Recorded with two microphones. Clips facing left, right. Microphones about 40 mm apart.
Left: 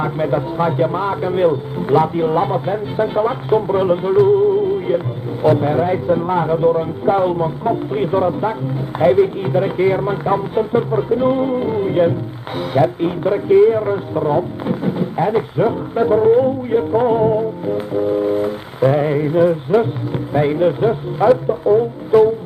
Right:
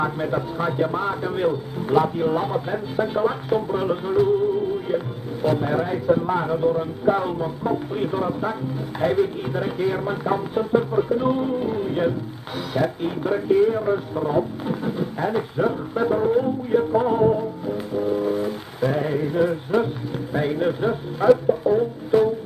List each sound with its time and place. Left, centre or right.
0.0 s a man's voice: left